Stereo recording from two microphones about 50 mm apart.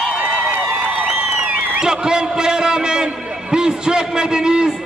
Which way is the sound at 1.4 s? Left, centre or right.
Centre.